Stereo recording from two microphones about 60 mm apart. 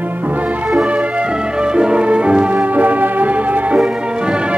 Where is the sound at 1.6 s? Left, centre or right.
Centre.